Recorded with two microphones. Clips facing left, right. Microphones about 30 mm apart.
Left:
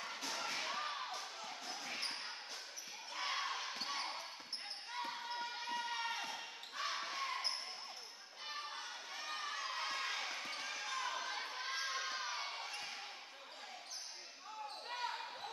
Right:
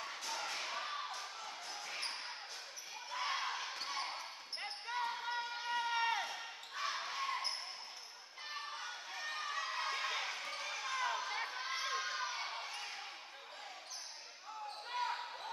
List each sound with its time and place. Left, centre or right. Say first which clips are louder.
0.0 s thump: right 1 dB; centre
3.2 s basketball bounce: right 2 dB; centre
4.9 s basketball bounce: right 5 dB; centre
5.2 s run: right 3 dB; centre
6.1 s basketball bounce: right 3 dB; centre
9.1 s a sound: right 2 dB; centre
10.3 s basketball bounce: right 1 dB; centre
11.1 s a sound: right 3 dB; centre
14.9 s basketball bounce: right 4 dB; centre